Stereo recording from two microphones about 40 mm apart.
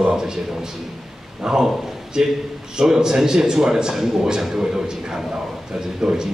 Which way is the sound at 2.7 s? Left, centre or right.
Centre.